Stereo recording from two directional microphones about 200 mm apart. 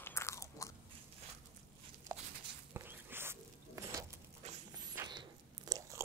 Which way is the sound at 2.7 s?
10° right (ahead or behind).